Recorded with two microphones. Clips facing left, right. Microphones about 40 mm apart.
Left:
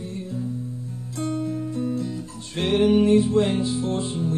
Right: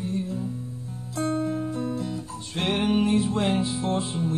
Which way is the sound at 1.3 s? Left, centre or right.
Right.